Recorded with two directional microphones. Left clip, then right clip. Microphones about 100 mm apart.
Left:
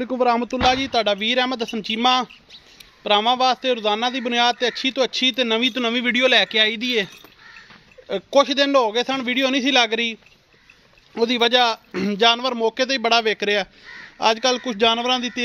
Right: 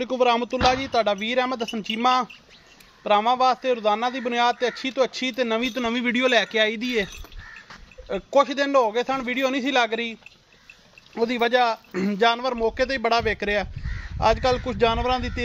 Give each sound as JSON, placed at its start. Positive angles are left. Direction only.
{"t": 0.2, "sound": "a man's voice", "side_deg": 65}
{"t": 5.8, "sound": "a man's voice", "side_deg": 85}
{"t": 8.1, "sound": "speech", "side_deg": 55}
{"t": 11.1, "sound": "a man's voice", "side_deg": 75}